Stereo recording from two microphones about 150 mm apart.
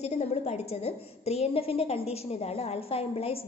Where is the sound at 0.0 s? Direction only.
45° left (ahead or behind).